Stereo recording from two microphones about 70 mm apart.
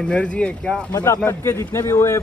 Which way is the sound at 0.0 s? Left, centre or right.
Centre.